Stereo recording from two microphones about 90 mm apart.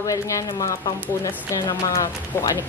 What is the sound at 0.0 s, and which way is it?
Speech, 40° left (ahead or behind).